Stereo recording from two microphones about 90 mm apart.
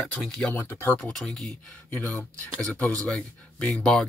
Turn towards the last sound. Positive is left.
turn(degrees=5)  # may be behind; listen again after turning